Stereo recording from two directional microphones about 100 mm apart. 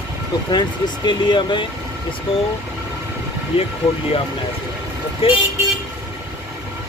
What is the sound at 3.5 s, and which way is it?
Speech, 65° left (ahead or behind).